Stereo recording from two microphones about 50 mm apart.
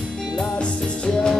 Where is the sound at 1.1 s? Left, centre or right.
Centre.